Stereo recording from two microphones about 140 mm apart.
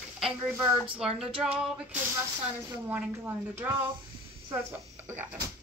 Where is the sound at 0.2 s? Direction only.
Centre (ahead or behind).